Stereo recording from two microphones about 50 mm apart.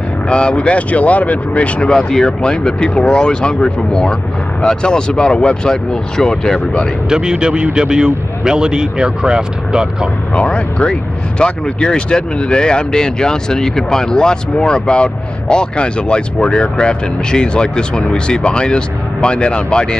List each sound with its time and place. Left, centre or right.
0.3 s speech: centre
1.9 s speech: centre
7.1 s a man's voice: centre
10.3 s speech: left